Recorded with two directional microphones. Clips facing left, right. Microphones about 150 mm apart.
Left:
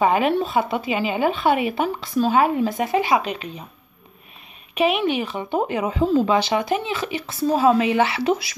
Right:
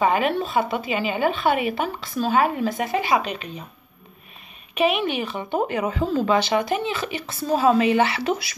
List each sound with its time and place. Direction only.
0.0 s speech: 15° left (ahead or behind)
4.7 s speech: 15° left (ahead or behind)